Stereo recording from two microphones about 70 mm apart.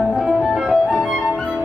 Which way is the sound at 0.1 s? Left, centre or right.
Centre.